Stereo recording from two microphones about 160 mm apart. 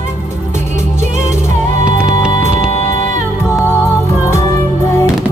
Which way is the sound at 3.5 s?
15° left (ahead or behind).